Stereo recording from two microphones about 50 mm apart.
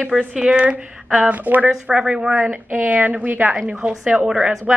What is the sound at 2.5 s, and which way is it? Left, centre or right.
A woman's voice, right.